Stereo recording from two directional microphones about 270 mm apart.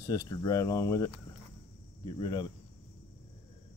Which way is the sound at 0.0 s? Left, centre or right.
Centre.